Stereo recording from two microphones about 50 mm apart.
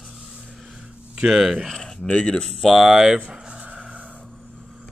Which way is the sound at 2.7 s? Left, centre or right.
Centre.